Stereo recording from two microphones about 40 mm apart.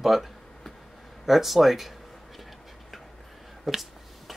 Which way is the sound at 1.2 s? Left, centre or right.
Centre.